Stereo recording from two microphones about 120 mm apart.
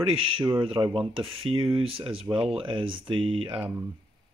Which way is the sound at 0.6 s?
40° right (ahead or behind).